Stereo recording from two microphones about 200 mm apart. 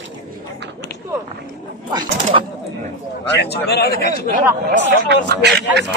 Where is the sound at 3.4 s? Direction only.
55° left (ahead or behind).